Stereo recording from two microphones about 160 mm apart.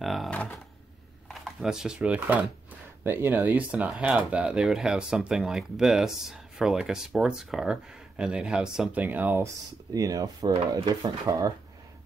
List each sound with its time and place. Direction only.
0.0 s speech: centre (ahead or behind)
9.9 s speech: 20° right (ahead or behind)